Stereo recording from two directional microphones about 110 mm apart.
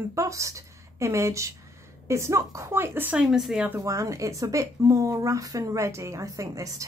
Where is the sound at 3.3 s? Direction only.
Centre (ahead or behind).